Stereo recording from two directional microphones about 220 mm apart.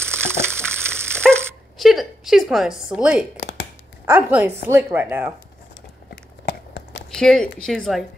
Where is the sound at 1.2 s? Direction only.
Centre (ahead or behind).